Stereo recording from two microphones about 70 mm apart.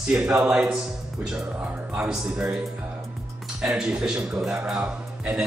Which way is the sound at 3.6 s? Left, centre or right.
Centre.